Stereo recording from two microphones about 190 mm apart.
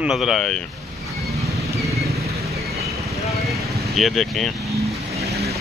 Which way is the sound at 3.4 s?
Centre (ahead or behind).